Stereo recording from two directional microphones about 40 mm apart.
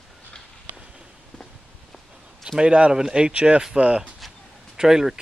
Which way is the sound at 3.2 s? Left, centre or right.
Right.